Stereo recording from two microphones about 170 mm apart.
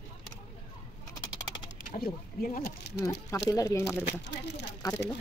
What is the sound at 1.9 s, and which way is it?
Speech, 55° left (ahead or behind).